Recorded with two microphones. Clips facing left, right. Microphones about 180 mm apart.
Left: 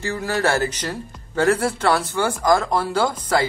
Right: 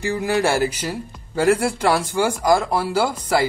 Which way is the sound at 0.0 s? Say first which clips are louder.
Right 2 dB; 15° right (ahead or behind).